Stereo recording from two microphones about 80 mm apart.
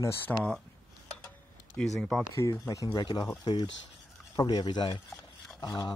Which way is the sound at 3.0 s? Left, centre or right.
Left.